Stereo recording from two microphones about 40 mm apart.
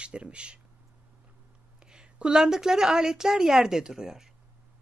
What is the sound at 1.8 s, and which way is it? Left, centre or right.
A woman's voice, right.